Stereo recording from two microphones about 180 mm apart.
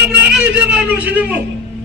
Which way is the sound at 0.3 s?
5° right (ahead or behind).